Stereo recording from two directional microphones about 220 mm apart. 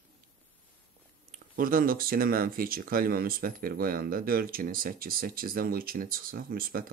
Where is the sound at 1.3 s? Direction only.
40° right (ahead or behind).